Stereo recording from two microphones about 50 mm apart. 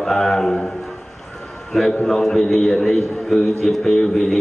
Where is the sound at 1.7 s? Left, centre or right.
Centre.